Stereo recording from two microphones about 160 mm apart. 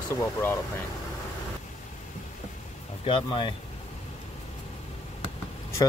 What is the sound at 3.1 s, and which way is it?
Speech, 35° left (ahead or behind).